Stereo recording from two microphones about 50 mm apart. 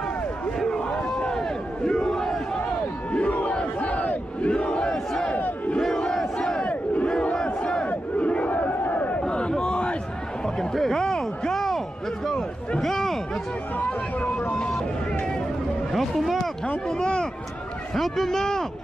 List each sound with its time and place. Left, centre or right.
0.7 s a sound: centre
1.9 s battle cry: centre
3.1 s a sound: left
3.8 s crowd: left
5.8 s crowd: centre
6.6 s battle cry: left
9.2 s battle cry: centre
10.4 s a sound: centre
13.7 s vehicle: left
15.9 s speech: centre
16.6 s speech: centre
17.9 s a man's voice: centre